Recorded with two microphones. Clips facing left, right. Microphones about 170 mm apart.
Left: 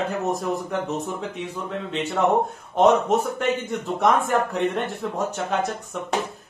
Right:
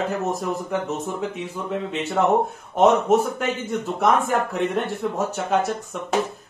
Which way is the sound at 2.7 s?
5° right (ahead or behind).